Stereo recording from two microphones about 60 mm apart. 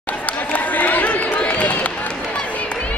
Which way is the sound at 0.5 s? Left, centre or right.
Left.